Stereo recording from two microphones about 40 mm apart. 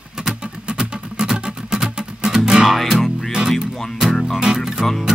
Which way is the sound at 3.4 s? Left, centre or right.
Centre.